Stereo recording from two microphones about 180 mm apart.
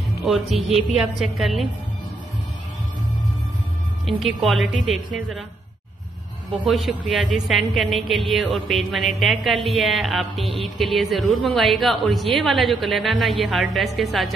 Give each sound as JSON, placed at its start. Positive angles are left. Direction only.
{"t": 0.2, "sound": "speech", "side_deg": 0}
{"t": 0.6, "sound": "a woman's voice", "side_deg": -30}
{"t": 0.9, "sound": "speech", "side_deg": 0}
{"t": 4.4, "sound": "speech", "side_deg": 0}
{"t": 6.6, "sound": "speech", "side_deg": 0}